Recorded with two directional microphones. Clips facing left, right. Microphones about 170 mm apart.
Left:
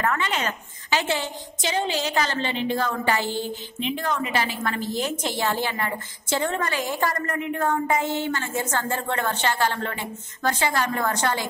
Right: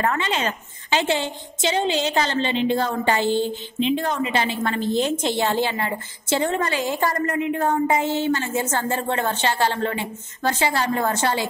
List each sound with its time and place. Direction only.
0.0 s a woman's voice: 25° right (ahead or behind)